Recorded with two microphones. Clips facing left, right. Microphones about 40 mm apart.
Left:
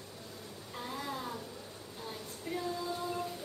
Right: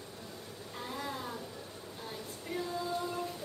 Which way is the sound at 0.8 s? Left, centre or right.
Centre.